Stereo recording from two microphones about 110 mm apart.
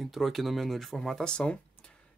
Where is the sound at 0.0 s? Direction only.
Centre (ahead or behind).